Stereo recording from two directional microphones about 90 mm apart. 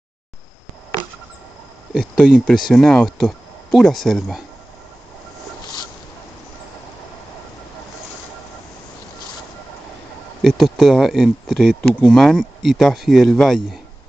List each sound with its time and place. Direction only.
2.0 s speech: centre (ahead or behind)
2.7 s speech: 10° left (ahead or behind)
3.2 s speech: centre (ahead or behind)
10.4 s speech: centre (ahead or behind)